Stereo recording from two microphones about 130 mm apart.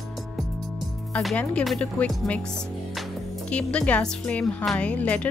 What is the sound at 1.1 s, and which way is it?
A woman's voice, 5° left (ahead or behind).